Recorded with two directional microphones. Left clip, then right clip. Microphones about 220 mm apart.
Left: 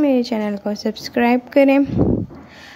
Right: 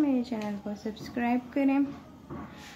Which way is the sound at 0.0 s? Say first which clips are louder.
Left 12 dB; 40° left (ahead or behind).